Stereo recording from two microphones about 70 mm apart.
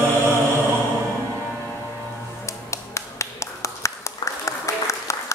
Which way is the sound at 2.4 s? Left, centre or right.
Left.